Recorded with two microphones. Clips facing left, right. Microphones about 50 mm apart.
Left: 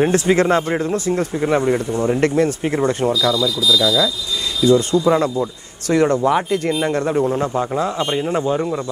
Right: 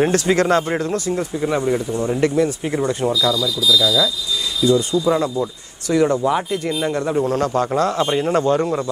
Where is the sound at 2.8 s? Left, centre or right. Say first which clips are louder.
Left 1 dB; left.